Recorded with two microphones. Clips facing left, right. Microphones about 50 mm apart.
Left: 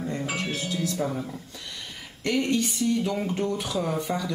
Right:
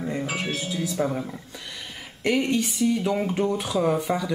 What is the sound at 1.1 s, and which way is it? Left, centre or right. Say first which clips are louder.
Speech: right 2 dB; right.